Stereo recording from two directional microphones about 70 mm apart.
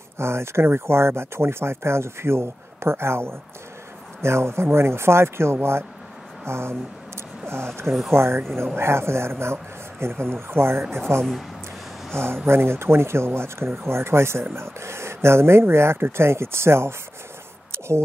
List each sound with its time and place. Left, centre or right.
0.2 s speech: right